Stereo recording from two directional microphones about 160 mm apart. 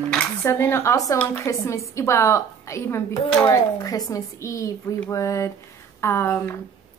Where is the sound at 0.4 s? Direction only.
15° left (ahead or behind).